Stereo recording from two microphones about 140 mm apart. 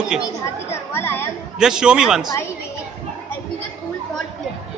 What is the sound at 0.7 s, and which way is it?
Chatter, 15° left (ahead or behind).